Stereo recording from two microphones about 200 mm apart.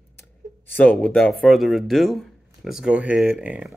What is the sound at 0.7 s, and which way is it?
Speech, 5° left (ahead or behind).